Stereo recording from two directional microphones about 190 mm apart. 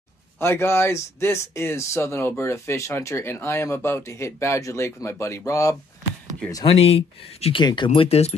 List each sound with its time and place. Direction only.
0.4 s speech: 15° left (ahead or behind)
6.5 s speech: 30° left (ahead or behind)